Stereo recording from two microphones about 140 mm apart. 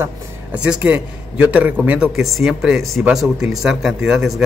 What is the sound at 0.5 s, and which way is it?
A man's voice, 10° right (ahead or behind).